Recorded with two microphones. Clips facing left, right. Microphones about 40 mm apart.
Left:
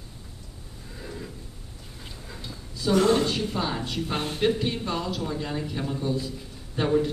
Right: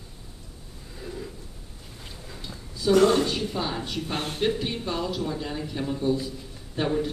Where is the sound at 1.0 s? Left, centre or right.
Centre.